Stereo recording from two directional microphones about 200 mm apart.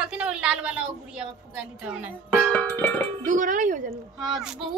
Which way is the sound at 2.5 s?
5° left (ahead or behind).